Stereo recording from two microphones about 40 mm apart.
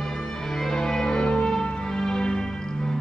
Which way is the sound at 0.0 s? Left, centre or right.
Centre.